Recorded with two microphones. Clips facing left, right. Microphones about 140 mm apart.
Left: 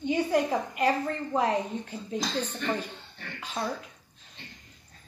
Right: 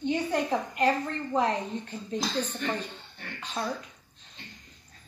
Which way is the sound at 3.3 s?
10° left (ahead or behind).